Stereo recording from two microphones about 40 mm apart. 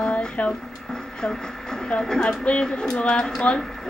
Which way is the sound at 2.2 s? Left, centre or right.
Left.